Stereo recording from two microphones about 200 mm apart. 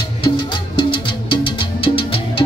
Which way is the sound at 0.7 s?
25° left (ahead or behind).